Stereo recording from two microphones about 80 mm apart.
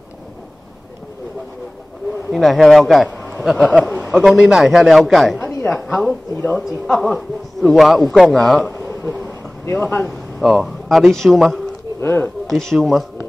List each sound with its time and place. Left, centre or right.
2.3 s a man's voice: centre
9.7 s speech: left
10.0 s a man's voice: centre
12.0 s speech: left
12.4 s a man's voice: centre